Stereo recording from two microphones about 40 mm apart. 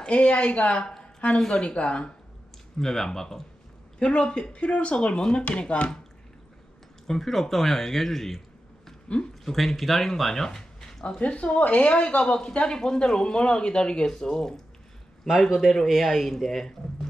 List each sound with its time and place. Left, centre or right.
0.1 s a woman's voice: left
1.0 s a sound: left
1.6 s speech: left
2.8 s speech: centre
4.0 s a woman's voice: left
7.1 s speech: centre
11.1 s speech: left; by 17.1 s centre